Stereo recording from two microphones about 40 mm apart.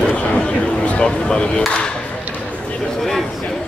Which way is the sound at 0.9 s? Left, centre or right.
Left.